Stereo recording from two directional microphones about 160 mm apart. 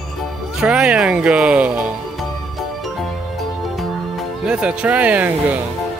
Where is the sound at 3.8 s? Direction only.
Centre (ahead or behind).